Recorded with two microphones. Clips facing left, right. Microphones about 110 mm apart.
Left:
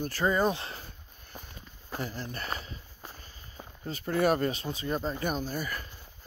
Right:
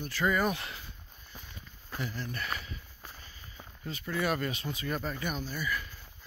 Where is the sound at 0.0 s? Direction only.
35° left (ahead or behind).